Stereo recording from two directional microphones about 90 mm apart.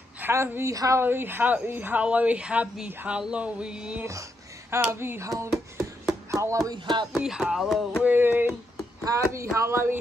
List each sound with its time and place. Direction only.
0.2 s a woman's voice: 25° right (ahead or behind)
1.0 s a woman's voice: 25° right (ahead or behind)
4.6 s speech: 25° right (ahead or behind)
6.3 s speech: 35° right (ahead or behind)
6.7 s speech: 55° right (ahead or behind)
7.2 s speech: 5° right (ahead or behind)
8.0 s speech: 20° right (ahead or behind)
9.0 s speech: 35° right (ahead or behind)